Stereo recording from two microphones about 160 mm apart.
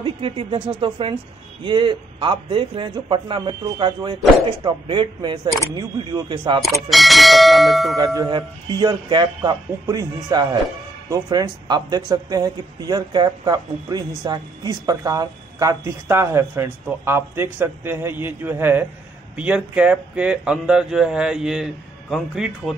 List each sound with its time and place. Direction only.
0.0 s speech: 35° right (ahead or behind)
6.6 s speech: centre (ahead or behind)
8.0 s speech: 25° right (ahead or behind); by 22.8 s centre (ahead or behind)